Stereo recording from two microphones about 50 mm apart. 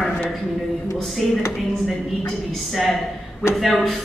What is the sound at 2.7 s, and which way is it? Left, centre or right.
Speech, centre.